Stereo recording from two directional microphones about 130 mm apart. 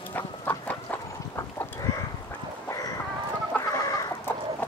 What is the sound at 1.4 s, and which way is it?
Livestock, 25° left (ahead or behind).